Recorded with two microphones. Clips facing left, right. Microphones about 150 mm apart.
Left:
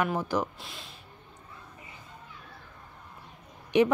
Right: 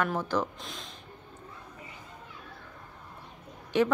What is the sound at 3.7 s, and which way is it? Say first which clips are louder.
Speech: left 3 dB; 15° left (ahead or behind).